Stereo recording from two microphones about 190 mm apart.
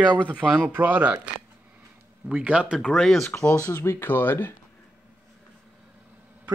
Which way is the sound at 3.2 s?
15° left (ahead or behind).